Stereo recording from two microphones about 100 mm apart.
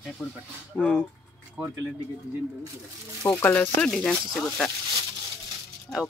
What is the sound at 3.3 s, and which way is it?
Speech, 20° left (ahead or behind).